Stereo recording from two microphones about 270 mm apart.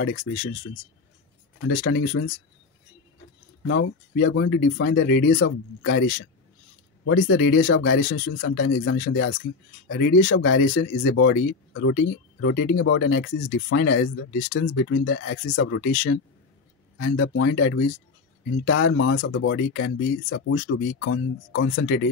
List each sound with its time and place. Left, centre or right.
0.0 s speech: left
1.6 s speech: left
3.6 s speech: left
7.1 s speech: left
16.9 s speech: left